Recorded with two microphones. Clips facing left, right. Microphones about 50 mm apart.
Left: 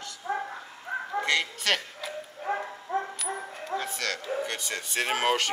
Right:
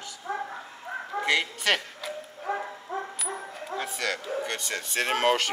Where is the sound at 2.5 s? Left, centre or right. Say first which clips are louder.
Even; left.